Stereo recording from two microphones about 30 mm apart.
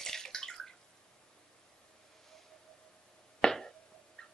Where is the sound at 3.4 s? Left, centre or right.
Centre.